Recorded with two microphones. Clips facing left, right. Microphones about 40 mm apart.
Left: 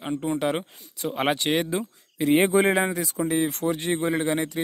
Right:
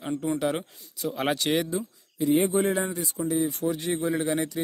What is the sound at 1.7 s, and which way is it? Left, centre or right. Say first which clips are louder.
Speech: left 3 dB; left.